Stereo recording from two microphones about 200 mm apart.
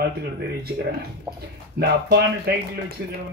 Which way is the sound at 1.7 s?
50° right (ahead or behind).